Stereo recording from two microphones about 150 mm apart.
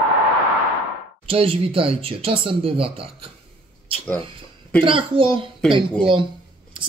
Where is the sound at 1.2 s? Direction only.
40° right (ahead or behind).